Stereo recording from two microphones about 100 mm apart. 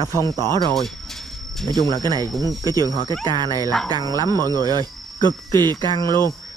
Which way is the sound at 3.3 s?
45° right (ahead or behind).